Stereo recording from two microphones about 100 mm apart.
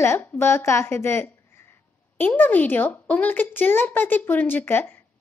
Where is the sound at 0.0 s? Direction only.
25° left (ahead or behind).